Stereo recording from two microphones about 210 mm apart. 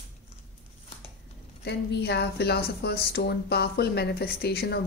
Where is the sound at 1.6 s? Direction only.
50° left (ahead or behind).